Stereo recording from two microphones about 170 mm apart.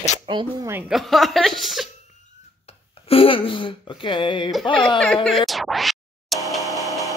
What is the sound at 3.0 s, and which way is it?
Speech, 35° left (ahead or behind).